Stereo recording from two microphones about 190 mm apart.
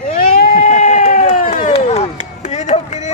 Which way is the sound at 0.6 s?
40° left (ahead or behind).